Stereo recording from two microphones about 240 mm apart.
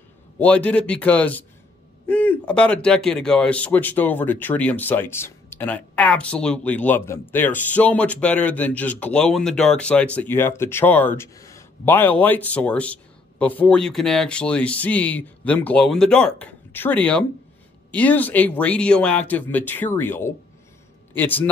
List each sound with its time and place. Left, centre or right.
0.4 s a man's voice: centre